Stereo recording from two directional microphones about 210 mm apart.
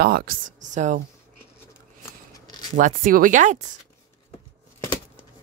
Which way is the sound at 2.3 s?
20° left (ahead or behind).